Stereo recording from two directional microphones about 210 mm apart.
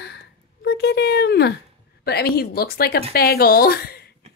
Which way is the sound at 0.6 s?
50° left (ahead or behind).